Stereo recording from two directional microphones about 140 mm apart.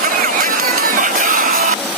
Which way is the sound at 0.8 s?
80° right.